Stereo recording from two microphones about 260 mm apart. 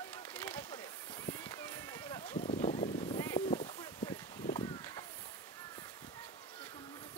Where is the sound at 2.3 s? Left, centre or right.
Left.